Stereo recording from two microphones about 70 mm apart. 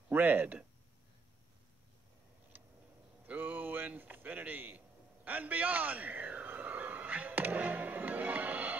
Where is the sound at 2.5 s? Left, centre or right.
Right.